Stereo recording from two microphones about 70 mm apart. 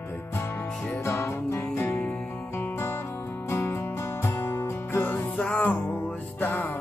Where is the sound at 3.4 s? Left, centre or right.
Left.